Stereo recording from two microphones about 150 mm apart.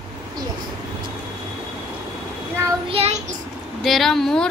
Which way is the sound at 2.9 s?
40° right (ahead or behind).